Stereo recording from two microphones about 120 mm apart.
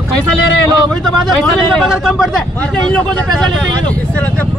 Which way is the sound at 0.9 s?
Centre (ahead or behind).